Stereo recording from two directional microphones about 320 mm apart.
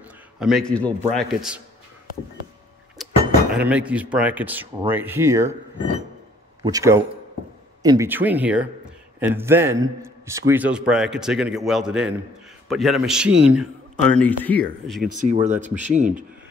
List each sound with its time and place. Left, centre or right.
0.4 s a man's voice: centre
3.0 s a sound: centre
3.5 s a man's voice: centre
6.6 s a man's voice: centre
15.0 s speech: right